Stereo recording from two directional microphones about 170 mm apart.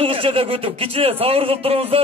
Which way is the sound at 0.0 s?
35° right (ahead or behind).